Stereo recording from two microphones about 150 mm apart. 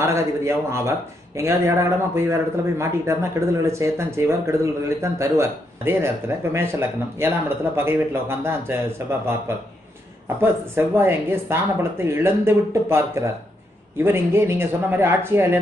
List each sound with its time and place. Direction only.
0.0 s speech: 20° right (ahead or behind)
10.4 s speech: 15° right (ahead or behind)